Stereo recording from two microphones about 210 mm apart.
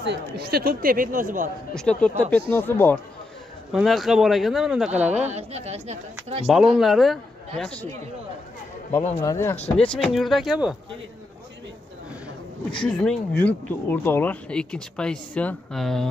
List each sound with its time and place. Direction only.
0.4 s speech: 50° right (ahead or behind)
1.7 s speech: 5° left (ahead or behind)
3.7 s speech: centre (ahead or behind)
5.1 s speech: 30° right (ahead or behind)
6.4 s speech: centre (ahead or behind)
8.9 s speech: 15° left (ahead or behind); by 10.8 s centre (ahead or behind)
12.8 s speech: 5° left (ahead or behind)